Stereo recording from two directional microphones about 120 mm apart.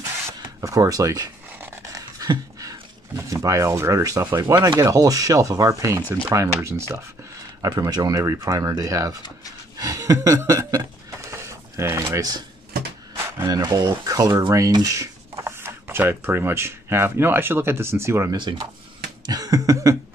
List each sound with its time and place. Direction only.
0.0 s a sound: 25° right (ahead or behind)
1.6 s speech: 25° right (ahead or behind)
9.8 s cough: 30° right (ahead or behind)
13.1 s a sound: 20° right (ahead or behind)
13.6 s speech: 35° right (ahead or behind)
18.3 s speech: 40° right (ahead or behind)